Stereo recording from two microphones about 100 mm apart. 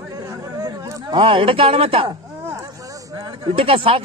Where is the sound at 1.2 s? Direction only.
65° right (ahead or behind).